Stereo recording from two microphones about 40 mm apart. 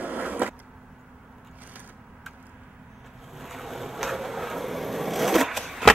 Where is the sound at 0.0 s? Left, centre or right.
Right.